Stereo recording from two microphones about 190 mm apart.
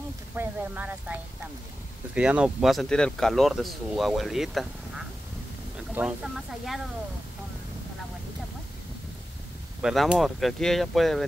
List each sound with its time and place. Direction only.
0.4 s speech: 10° right (ahead or behind)
9.8 s speech: 5° right (ahead or behind)